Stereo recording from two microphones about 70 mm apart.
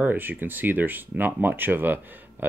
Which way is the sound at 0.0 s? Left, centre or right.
Right.